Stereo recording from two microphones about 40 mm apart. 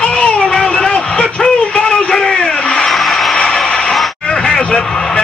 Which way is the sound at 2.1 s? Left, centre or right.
Centre.